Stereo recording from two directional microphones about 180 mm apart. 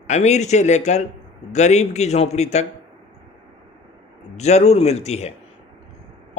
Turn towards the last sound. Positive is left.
turn(degrees=35)  # may be behind; listen again after turning